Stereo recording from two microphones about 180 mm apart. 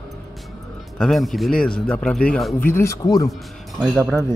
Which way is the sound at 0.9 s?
Centre (ahead or behind).